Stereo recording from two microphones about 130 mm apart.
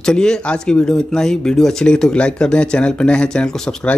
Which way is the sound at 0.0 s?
5° left (ahead or behind).